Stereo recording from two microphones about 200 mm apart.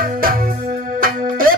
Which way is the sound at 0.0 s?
45° right (ahead or behind).